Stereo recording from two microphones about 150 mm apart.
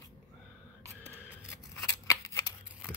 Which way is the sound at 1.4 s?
10° left (ahead or behind).